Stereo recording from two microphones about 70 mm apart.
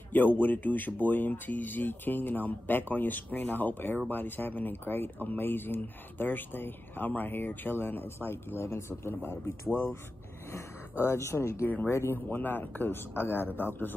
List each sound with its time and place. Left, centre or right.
0.1 s speech: left
11.1 s speech: left